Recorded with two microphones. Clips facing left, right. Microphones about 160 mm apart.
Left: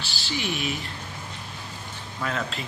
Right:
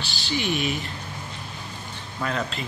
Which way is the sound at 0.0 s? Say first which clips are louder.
Right 3 dB; centre (ahead or behind).